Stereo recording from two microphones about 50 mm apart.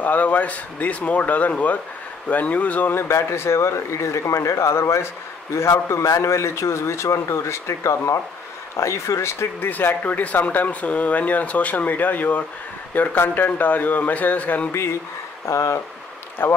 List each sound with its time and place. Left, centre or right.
0.0 s speech: left
2.9 s speech: left
9.6 s speech: left
15.4 s speech: left
16.4 s speech: left